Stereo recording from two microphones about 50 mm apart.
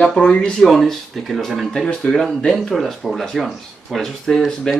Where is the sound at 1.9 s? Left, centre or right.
Centre.